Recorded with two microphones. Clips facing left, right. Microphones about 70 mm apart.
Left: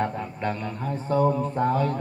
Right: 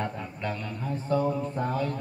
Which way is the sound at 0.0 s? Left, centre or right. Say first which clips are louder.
Left 5 dB; left.